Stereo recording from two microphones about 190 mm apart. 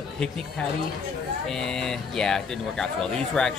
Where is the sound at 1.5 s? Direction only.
5° left (ahead or behind).